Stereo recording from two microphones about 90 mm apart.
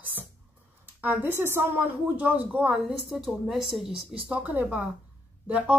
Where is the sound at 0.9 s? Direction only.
20° right (ahead or behind).